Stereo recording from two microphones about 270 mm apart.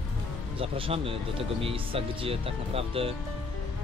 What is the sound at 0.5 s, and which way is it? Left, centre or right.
Speech, centre.